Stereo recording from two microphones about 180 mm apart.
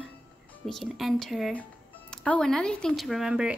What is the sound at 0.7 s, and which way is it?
A woman's voice, centre (ahead or behind).